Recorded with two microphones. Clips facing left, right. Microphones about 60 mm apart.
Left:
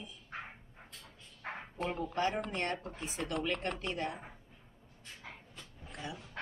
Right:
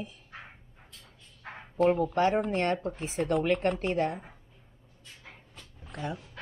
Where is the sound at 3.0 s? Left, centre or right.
Right.